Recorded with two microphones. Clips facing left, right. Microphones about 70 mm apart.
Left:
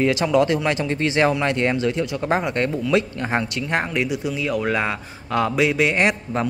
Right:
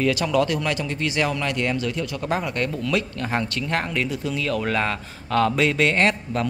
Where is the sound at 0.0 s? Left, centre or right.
Left.